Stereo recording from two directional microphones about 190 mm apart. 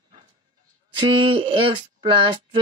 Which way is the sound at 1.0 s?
25° right (ahead or behind).